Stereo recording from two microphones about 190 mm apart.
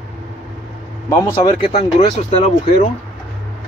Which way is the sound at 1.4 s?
30° left (ahead or behind).